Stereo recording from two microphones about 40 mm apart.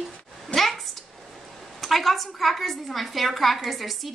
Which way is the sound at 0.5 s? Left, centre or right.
Left.